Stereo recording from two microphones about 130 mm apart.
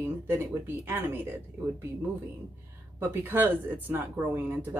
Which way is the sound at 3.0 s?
15° right (ahead or behind).